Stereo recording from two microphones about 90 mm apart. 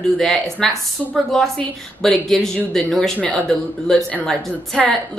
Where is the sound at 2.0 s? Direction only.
5° left (ahead or behind).